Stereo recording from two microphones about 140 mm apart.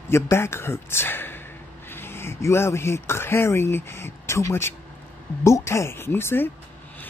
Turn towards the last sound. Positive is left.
turn(degrees=15)  # may be behind; listen again after turning